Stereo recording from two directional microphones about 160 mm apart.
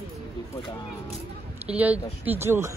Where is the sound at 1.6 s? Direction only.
10° right (ahead or behind).